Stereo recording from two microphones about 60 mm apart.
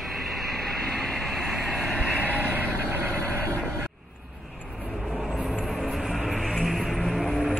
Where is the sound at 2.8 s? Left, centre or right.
Right.